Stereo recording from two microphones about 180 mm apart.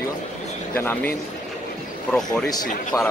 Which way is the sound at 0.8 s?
10° left (ahead or behind).